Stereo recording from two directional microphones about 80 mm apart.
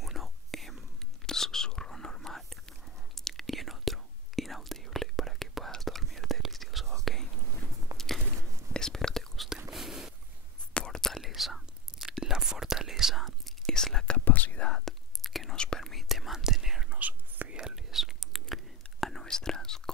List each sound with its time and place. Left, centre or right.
0.0 s whispering: centre
7.9 s a sound: right
8.7 s whispering: centre
9.7 s whispering: centre
10.7 s whispering: centre
11.1 s whispering: centre
14.2 s whispering: left
14.7 s whispering: centre
17.0 s whispering: centre
17.6 s whispering: centre